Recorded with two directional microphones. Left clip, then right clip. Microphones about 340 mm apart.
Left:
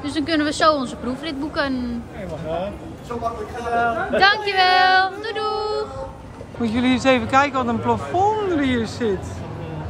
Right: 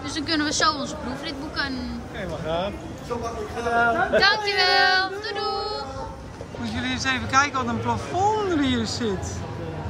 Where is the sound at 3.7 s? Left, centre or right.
Right.